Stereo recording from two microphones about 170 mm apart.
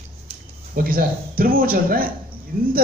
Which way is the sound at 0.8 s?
60° right (ahead or behind).